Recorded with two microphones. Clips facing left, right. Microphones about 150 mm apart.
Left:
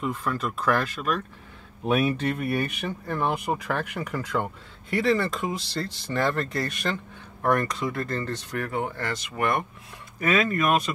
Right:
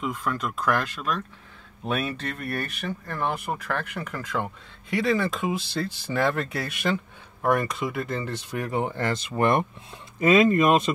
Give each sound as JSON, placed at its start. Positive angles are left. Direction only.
{"t": 0.2, "sound": "speech", "side_deg": 5}